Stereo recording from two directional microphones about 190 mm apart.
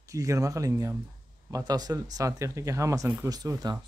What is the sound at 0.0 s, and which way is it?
Speech, 15° right (ahead or behind).